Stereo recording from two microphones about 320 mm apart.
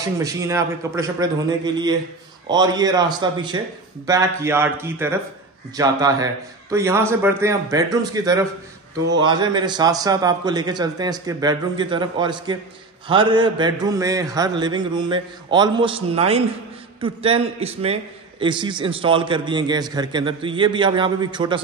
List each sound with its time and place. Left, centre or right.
0.2 s a man's voice: centre